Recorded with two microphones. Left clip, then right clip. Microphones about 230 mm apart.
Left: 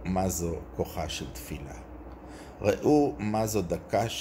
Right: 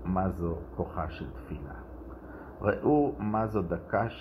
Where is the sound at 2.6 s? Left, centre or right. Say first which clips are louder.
Left 2 dB; centre.